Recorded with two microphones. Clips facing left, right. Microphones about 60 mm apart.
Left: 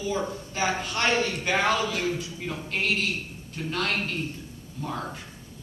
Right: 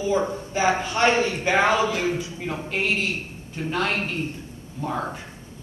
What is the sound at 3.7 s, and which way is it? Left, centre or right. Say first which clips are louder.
Speech: right 3 dB; right.